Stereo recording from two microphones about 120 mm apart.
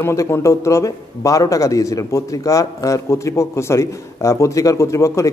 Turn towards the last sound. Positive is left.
turn(degrees=25)  # may be behind; listen again after turning